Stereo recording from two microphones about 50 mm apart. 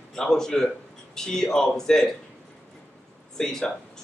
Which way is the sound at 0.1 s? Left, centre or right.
Centre.